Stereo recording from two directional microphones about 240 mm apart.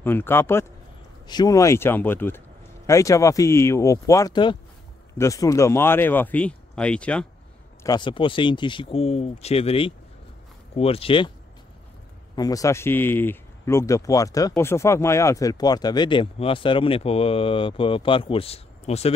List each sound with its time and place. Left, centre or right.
0.0 s speech: centre
7.8 s speech: centre
12.4 s speech: centre